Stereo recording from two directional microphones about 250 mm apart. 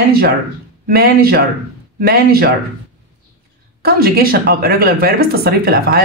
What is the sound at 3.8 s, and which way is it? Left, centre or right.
A woman's voice, right.